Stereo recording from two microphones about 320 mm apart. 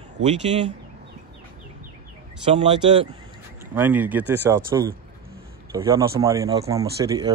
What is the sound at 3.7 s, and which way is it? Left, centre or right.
A man's voice, centre.